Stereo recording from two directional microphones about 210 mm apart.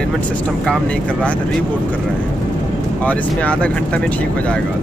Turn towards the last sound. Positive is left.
turn(degrees=5)  # may be behind; listen again after turning